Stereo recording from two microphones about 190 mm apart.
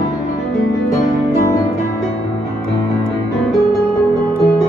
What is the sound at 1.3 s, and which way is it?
Music, 15° left (ahead or behind).